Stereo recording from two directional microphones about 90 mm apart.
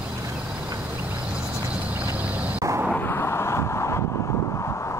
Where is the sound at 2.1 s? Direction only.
15° right (ahead or behind).